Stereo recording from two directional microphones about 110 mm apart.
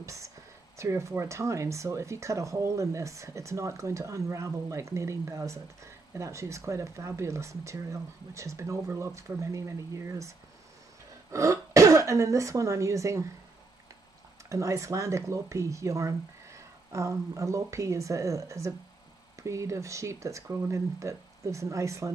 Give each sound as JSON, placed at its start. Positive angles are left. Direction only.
{"t": 0.0, "sound": "a sound", "side_deg": -30}
{"t": 0.7, "sound": "speech", "side_deg": -25}
{"t": 11.3, "sound": "speech", "side_deg": -30}
{"t": 14.5, "sound": "speech", "side_deg": -30}